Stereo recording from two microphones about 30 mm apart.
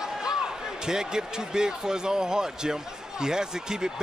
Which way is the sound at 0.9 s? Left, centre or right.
Right.